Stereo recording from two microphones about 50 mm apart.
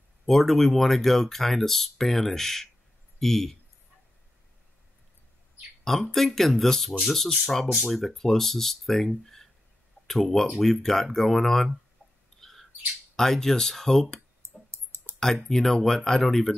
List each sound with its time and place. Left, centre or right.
0.3 s speech: centre
5.9 s speech: centre
12.4 s bird: centre
13.1 s speech: centre
14.7 s clicking: right
15.4 s speech: centre